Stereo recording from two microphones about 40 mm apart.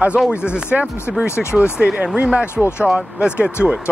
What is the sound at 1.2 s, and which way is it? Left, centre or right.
Speech, left.